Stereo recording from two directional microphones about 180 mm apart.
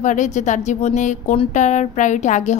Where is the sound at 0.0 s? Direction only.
45° left (ahead or behind).